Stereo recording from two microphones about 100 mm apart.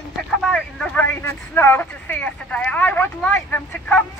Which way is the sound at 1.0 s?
25° left (ahead or behind).